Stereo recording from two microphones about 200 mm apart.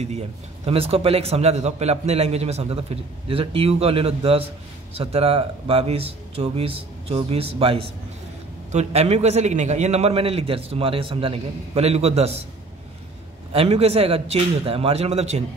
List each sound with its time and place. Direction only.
0.7 s a man's voice: 30° right (ahead or behind)
13.5 s a man's voice: 30° right (ahead or behind)